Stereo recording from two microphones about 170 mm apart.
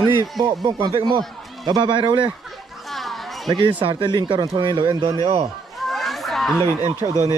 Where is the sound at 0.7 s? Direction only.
25° right (ahead or behind).